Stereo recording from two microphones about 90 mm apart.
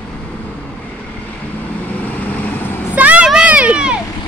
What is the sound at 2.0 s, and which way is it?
Vehicle, 15° left (ahead or behind).